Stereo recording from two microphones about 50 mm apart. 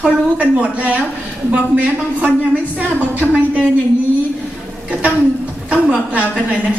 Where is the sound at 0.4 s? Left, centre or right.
Right.